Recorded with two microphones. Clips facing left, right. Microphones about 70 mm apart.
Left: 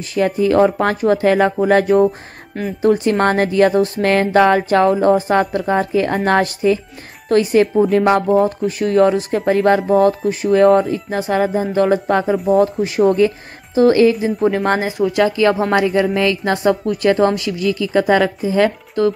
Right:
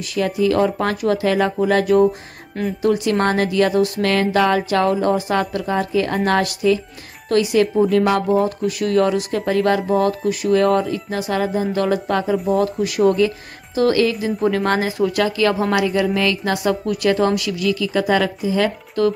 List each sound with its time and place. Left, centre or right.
0.1 s speech: left
7.6 s speech: centre
7.9 s speech: left
14.4 s speech: centre
14.7 s speech: left
19.0 s speech: left